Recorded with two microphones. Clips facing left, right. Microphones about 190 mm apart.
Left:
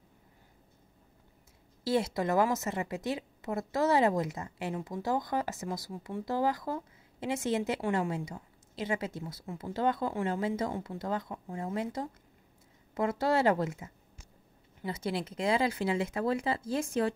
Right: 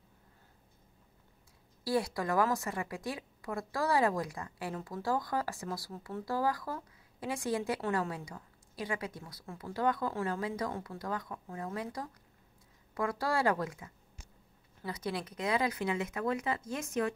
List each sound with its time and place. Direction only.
1.9 s a woman's voice: 25° left (ahead or behind)